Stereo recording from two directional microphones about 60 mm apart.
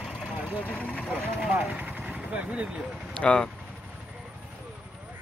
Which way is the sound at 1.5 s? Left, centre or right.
Right.